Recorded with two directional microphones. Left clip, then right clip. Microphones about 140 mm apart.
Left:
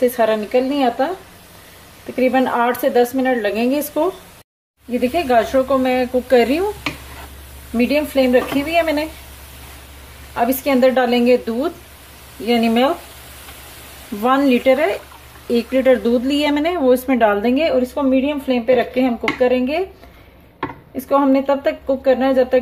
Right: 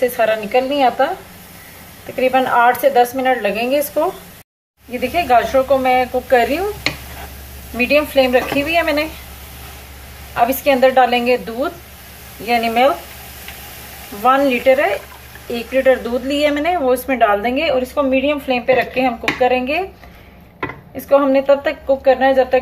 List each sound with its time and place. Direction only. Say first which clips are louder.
0.1 s speech: right 1 dB; 90° left
2.1 s speech: right 2 dB; 90° left
5.1 s speech: right 3 dB; 90° left
7.7 s speech: right 3 dB; 90° left
10.3 s speech: right 3 dB; 90° left
14.2 s speech: right 2 dB; 90° left
20.9 s speech: right 3 dB; 80° left